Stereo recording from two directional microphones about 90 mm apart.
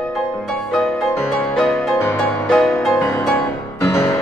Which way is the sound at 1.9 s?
25° left (ahead or behind).